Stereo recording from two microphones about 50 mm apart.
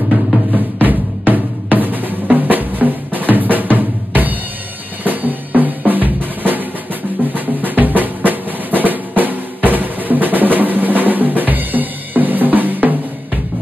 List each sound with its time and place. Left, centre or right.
0.7 s drum: right